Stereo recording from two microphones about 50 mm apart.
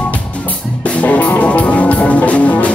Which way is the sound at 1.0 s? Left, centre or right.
Left.